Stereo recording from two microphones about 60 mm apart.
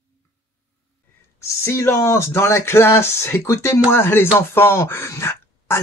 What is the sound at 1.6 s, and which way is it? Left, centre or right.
Speech, left.